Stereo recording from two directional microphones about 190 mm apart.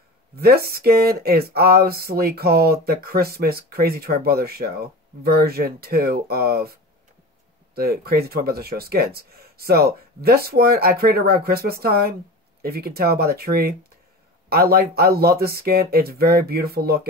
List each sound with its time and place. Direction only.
0.4 s speech: 55° right (ahead or behind)